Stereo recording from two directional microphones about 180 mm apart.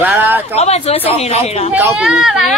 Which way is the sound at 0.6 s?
35° left (ahead or behind).